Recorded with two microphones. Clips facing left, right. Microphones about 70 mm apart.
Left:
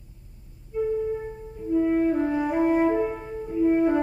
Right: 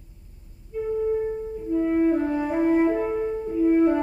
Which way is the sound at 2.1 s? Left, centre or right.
Centre.